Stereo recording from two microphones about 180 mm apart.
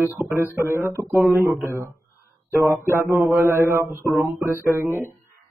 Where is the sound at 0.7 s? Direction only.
15° right (ahead or behind).